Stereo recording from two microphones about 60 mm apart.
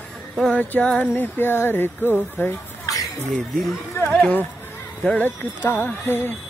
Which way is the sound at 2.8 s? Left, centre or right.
Left.